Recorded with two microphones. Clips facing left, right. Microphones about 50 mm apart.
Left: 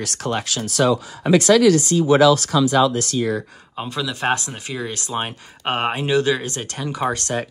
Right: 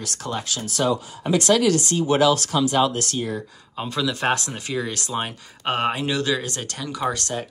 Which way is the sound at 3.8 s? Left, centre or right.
Centre.